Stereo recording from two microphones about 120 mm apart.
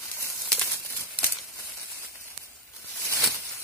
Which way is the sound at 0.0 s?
20° left (ahead or behind).